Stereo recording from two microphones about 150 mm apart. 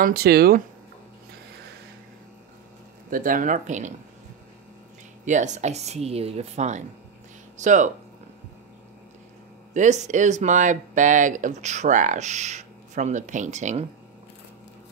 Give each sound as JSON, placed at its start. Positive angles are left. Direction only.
{"t": 0.0, "sound": "speech", "side_deg": -85}
{"t": 3.1, "sound": "speech", "side_deg": -65}
{"t": 5.2, "sound": "speech", "side_deg": -55}
{"t": 9.8, "sound": "speech", "side_deg": -50}